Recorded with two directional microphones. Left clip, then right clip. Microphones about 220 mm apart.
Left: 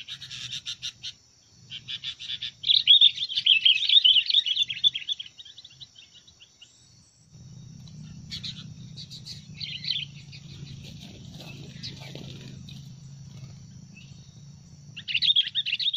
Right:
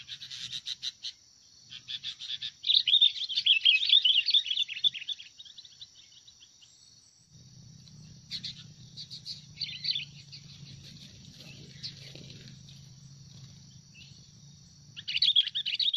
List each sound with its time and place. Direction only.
0.3 s bird: 10° right (ahead or behind)
1.7 s chirp: 5° right (ahead or behind)
8.4 s frog: centre (ahead or behind)
9.6 s bird: centre (ahead or behind)
15.0 s chirp: 30° right (ahead or behind)